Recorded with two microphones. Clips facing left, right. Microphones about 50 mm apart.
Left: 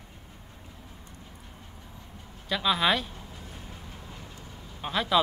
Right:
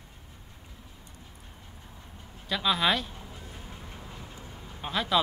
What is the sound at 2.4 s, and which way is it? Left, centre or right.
Speech, centre.